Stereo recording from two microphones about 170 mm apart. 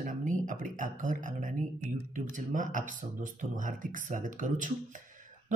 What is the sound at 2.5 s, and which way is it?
Speech, 50° right (ahead or behind).